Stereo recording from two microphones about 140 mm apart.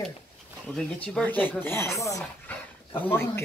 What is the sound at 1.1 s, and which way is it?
Speech, 10° left (ahead or behind).